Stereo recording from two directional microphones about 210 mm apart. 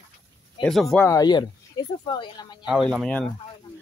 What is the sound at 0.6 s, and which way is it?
Speech, centre (ahead or behind).